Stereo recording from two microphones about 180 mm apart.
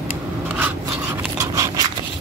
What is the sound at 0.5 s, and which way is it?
Rub, 10° right (ahead or behind).